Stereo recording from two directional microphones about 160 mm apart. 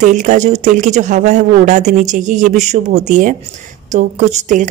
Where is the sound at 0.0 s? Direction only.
50° right (ahead or behind).